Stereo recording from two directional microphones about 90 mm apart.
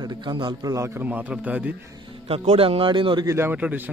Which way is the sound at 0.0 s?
55° right (ahead or behind).